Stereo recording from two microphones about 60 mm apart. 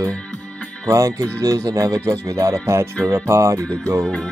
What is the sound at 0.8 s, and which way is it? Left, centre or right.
Speech, right.